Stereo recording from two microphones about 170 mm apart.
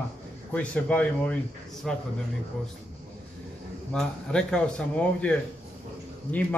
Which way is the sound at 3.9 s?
5° left (ahead or behind).